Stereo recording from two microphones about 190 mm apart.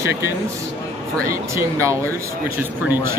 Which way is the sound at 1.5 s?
15° right (ahead or behind).